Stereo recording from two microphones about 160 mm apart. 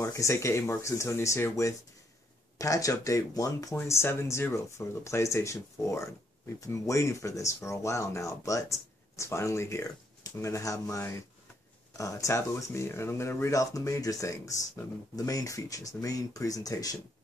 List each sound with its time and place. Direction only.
0.0 s speech: 20° left (ahead or behind)